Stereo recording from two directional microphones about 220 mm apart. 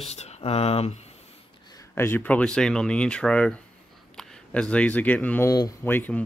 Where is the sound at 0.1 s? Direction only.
30° left (ahead or behind).